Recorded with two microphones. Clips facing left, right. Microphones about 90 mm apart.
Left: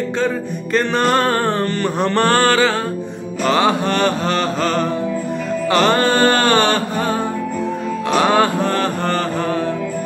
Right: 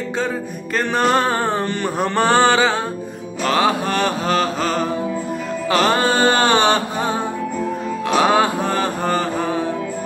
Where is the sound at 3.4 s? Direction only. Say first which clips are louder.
Left 2 dB; centre (ahead or behind).